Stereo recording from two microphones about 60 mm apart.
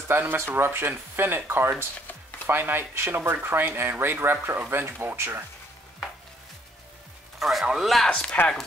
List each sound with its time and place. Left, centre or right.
0.3 s speech: right
7.3 s speech: centre
8.1 s speech: centre